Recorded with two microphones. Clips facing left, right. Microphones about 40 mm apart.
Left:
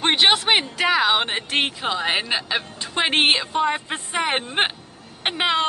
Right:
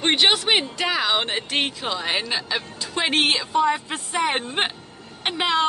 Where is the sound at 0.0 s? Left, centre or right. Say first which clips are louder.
Left 1 dB; centre.